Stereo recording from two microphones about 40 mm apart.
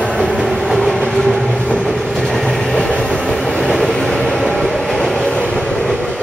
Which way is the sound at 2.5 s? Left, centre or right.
Centre.